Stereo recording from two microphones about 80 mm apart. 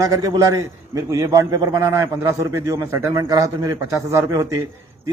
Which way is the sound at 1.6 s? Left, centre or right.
Right.